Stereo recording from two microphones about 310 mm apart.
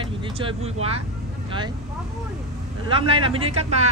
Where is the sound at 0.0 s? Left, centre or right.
Centre.